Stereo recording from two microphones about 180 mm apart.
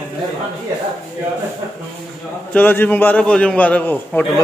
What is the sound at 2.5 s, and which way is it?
A man's voice, 10° left (ahead or behind).